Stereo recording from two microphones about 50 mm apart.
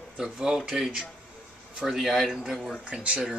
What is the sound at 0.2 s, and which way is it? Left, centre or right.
Speech, centre.